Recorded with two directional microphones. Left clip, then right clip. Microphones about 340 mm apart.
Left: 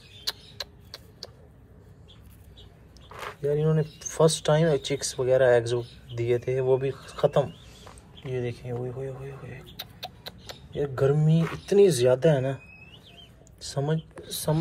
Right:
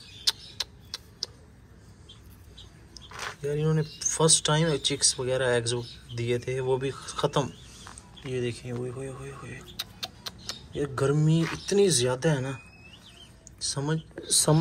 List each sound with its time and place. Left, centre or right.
0.2 s a sound: centre
3.4 s speech: centre
13.6 s speech: centre
14.2 s speech: right